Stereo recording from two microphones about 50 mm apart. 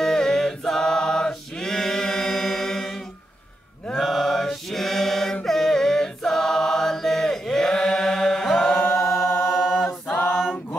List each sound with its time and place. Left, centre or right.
0.0 s chant: centre
4.0 s chant: centre
8.7 s chant: left
9.8 s a capella: left